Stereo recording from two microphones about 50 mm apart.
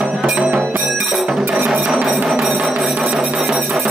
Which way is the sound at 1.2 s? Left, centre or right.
Centre.